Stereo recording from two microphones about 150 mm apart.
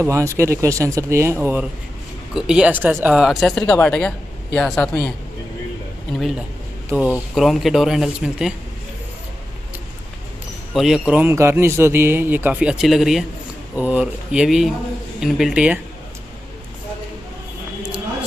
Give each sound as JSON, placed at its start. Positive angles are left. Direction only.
{"t": 0.0, "sound": "speech", "side_deg": -20}
{"t": 6.9, "sound": "speech", "side_deg": -10}
{"t": 10.7, "sound": "a man's voice", "side_deg": 0}